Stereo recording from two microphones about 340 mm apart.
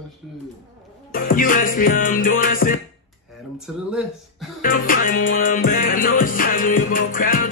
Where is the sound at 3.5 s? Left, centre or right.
Centre.